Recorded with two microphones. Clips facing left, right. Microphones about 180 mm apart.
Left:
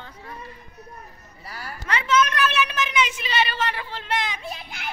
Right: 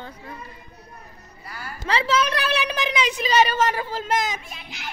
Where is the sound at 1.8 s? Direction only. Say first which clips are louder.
Even; 30° right (ahead or behind).